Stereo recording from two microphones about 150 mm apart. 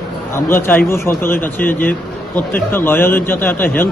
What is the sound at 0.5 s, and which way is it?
A man's voice, 15° left (ahead or behind).